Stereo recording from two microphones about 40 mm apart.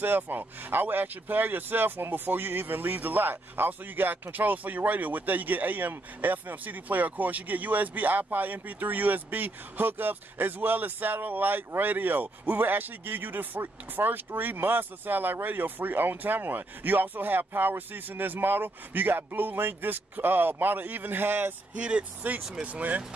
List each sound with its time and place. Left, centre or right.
0.0 s speech: right
21.7 s speech: right
22.2 s speech: right